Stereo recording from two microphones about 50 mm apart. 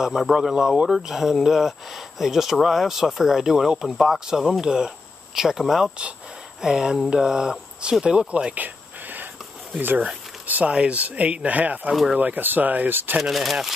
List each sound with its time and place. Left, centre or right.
0.0 s speech: centre
8.3 s a sound: right
9.8 s speech: right
10.6 s speech: right
11.9 s speech: centre
12.2 s speech: right
13.2 s speech: centre